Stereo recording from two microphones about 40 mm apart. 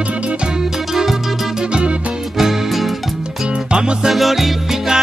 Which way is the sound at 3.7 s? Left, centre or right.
Right.